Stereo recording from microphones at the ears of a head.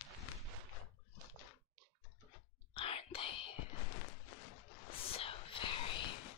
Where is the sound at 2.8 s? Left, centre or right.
Left.